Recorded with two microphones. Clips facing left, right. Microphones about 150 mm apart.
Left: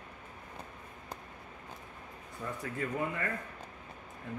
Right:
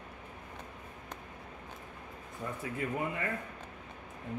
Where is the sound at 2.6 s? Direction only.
20° right (ahead or behind).